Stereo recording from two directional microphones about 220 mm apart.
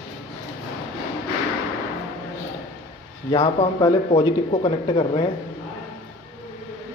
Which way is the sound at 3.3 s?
30° left (ahead or behind).